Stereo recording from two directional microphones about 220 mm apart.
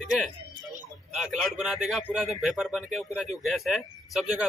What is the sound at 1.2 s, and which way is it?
Speech, centre (ahead or behind).